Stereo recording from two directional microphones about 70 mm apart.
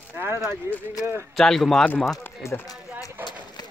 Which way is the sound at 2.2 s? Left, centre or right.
Left.